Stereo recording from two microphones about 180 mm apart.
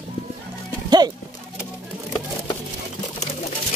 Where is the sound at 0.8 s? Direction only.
25° right (ahead or behind).